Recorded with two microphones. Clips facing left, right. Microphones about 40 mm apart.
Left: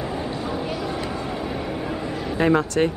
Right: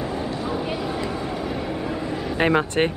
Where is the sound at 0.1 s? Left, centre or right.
Centre.